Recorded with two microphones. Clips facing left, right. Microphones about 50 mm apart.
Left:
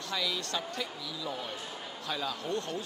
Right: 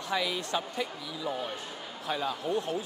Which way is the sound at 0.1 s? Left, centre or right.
Centre.